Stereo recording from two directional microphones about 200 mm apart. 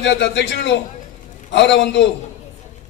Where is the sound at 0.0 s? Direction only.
60° left (ahead or behind).